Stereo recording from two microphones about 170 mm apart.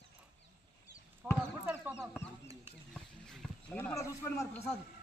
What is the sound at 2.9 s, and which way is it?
Wild animals, centre (ahead or behind).